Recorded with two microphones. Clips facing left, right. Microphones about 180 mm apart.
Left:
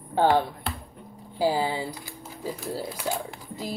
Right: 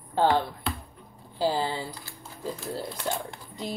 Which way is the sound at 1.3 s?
10° left (ahead or behind).